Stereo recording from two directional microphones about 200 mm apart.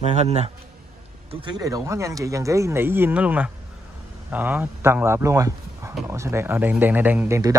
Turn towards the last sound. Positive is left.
turn(degrees=-15)  # may be behind; listen again after turning